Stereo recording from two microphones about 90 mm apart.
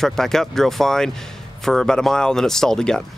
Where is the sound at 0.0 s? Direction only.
5° left (ahead or behind).